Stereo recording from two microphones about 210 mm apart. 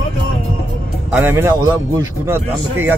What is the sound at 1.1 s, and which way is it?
Speech, 10° right (ahead or behind).